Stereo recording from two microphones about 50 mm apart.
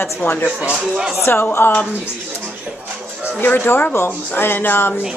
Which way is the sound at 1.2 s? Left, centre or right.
Left.